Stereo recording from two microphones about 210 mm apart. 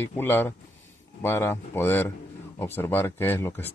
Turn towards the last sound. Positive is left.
turn(degrees=10)  # may be behind; listen again after turning